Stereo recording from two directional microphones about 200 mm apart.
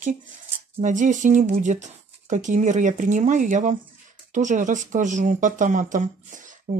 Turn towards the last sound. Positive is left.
turn(degrees=-40)  # may be behind; listen again after turning